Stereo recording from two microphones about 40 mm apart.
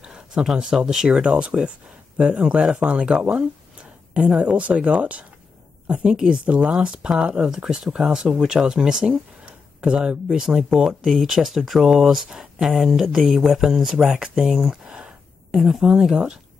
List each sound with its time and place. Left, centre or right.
0.0 s a sound: centre
0.6 s speech: centre; by 5.2 s right
5.9 s speech: right
7.5 s speech: centre
9.8 s speech: right
10.4 s speech: centre
14.1 s speech: right
14.4 s speech: centre